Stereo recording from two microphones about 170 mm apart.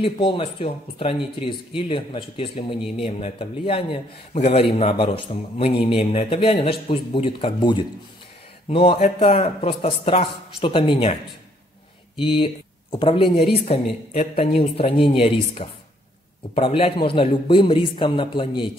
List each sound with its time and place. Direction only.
0.0 s a man's voice: 30° left (ahead or behind)
12.2 s a man's voice: 30° left (ahead or behind)
14.4 s a man's voice: 35° left (ahead or behind)